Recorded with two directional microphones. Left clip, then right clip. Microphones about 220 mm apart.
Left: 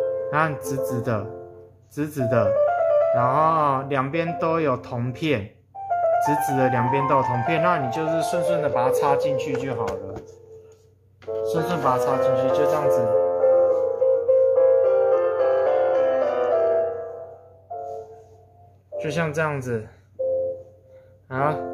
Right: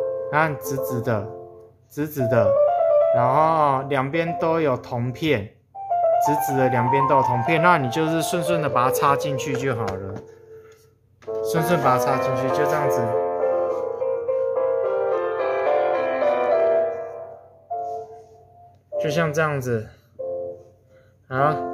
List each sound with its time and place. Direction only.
0.0 s music: 5° left (ahead or behind)
0.3 s speech: 5° right (ahead or behind)
2.5 s music: 10° left (ahead or behind)
3.2 s speech: 10° right (ahead or behind)
7.5 s speech: 25° right (ahead or behind)
7.9 s speech: 40° right (ahead or behind)
11.4 s speech: 50° right (ahead or behind)
12.4 s music: 35° right (ahead or behind)
18.9 s speech: 20° right (ahead or behind)
20.2 s a sound: 25° right (ahead or behind)
21.3 s speech: 15° right (ahead or behind)